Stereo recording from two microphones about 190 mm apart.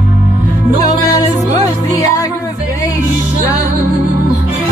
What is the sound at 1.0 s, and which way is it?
Music, 20° left (ahead or behind).